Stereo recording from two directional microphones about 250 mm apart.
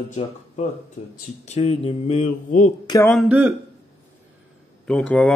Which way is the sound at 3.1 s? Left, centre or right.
Centre.